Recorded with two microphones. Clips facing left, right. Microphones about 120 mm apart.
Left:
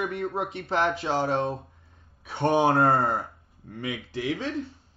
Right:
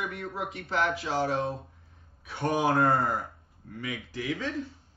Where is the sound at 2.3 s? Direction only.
30° left (ahead or behind).